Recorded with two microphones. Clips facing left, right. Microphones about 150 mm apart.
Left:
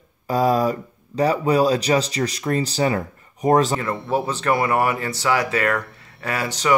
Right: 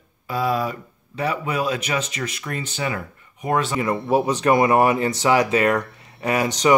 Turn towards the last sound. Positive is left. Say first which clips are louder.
# right 4 dB
turn(degrees=-20)  # may be behind; listen again after turning